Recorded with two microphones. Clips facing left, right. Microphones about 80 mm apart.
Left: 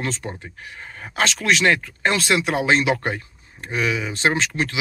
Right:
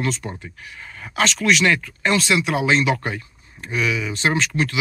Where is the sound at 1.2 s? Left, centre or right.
Left.